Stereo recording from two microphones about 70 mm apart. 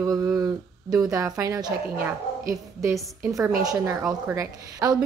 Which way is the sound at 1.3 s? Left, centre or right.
Right.